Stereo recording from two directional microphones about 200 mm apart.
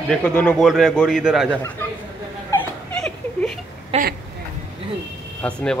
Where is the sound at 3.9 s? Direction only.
30° right (ahead or behind).